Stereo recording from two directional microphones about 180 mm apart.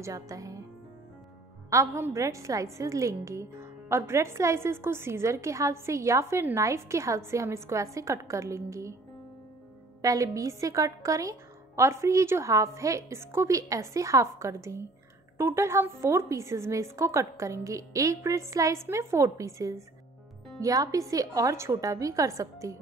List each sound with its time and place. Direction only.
0.0 s a woman's voice: 20° right (ahead or behind)
1.7 s a woman's voice: 15° right (ahead or behind)
10.0 s a woman's voice: 20° right (ahead or behind)